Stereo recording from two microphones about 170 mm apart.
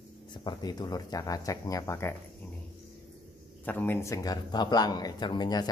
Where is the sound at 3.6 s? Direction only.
10° left (ahead or behind).